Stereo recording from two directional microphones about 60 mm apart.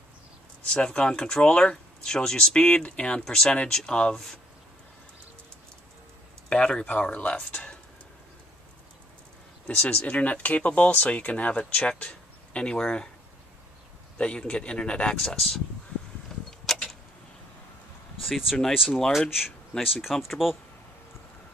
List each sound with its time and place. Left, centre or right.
0.8 s speech: centre
6.5 s speech: centre
9.8 s speech: left
14.1 s speech: centre
16.4 s a sound: centre
18.2 s speech: centre
18.9 s speech: centre
19.1 s speech: centre